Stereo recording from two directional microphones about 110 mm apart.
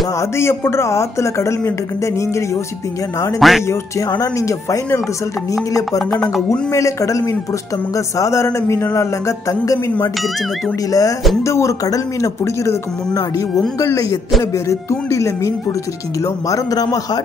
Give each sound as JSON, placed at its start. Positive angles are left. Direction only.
{"t": 0.2, "sound": "speech", "side_deg": 25}
{"t": 3.3, "sound": "music", "side_deg": 0}
{"t": 4.1, "sound": "a man's voice", "side_deg": 30}
{"t": 5.9, "sound": "music", "side_deg": 5}
{"t": 6.7, "sound": "a man's voice", "side_deg": 30}